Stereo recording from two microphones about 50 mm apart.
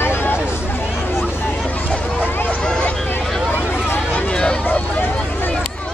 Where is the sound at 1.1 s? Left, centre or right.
Left.